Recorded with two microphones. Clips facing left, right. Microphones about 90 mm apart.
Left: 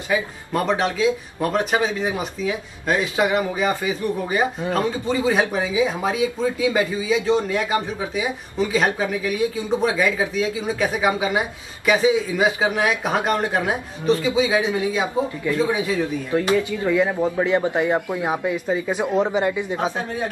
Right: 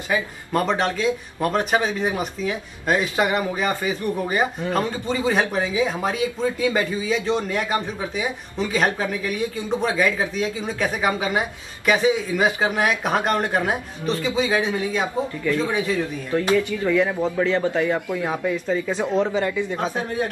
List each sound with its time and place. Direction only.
0.5 s speech: centre (ahead or behind); by 20.1 s 20° left (ahead or behind)